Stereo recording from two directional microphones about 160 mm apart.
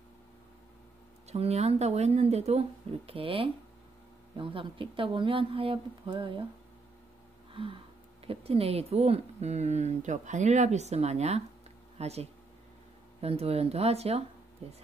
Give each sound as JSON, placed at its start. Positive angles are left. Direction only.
{"t": 1.3, "sound": "a woman's voice", "side_deg": -40}
{"t": 8.3, "sound": "a woman's voice", "side_deg": -35}